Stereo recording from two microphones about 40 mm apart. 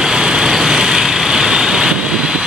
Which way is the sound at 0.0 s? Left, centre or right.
Centre.